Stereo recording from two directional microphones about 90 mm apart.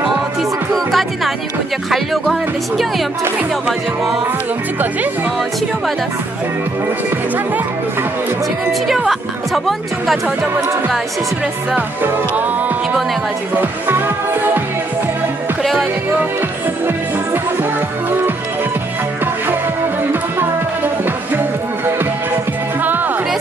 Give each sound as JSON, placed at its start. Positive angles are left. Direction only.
{"t": 0.4, "sound": "music", "side_deg": 0}
{"t": 3.6, "sound": "music", "side_deg": -5}
{"t": 8.8, "sound": "speech", "side_deg": 0}
{"t": 12.0, "sound": "speech", "side_deg": -20}
{"t": 13.6, "sound": "music", "side_deg": -20}
{"t": 15.6, "sound": "music", "side_deg": 0}
{"t": 20.8, "sound": "music", "side_deg": -20}
{"t": 22.8, "sound": "music", "side_deg": -20}